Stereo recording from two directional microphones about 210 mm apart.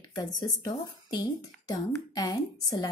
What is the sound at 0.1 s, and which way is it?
A woman's voice, 20° left (ahead or behind).